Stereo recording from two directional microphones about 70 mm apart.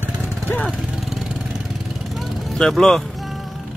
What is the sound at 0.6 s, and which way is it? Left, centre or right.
Vehicle, centre.